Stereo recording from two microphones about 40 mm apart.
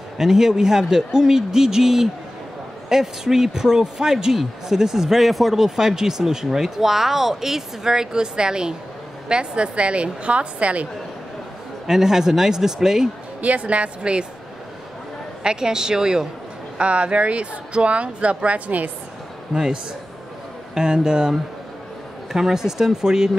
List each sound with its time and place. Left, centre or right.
0.2 s a man's voice: centre; by 10.9 s right
11.9 s a man's voice: centre
13.4 s speech: right
15.4 s a man's voice: centre
16.7 s speech: right
19.5 s a woman's voice: centre
22.3 s a man's voice: centre